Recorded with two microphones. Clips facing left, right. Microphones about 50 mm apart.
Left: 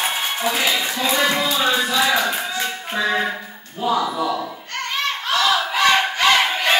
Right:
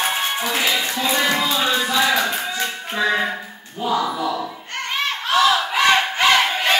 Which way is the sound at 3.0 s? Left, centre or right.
Centre.